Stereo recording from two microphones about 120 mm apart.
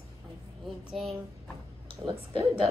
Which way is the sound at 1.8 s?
50° right (ahead or behind).